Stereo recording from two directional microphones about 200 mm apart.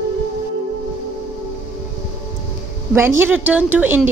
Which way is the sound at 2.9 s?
10° right (ahead or behind).